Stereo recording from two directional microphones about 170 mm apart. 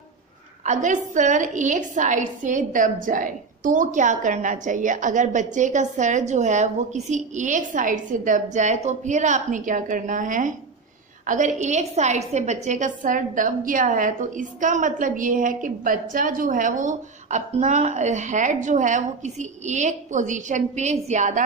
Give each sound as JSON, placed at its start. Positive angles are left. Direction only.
{"t": 0.7, "sound": "a woman's voice", "side_deg": -45}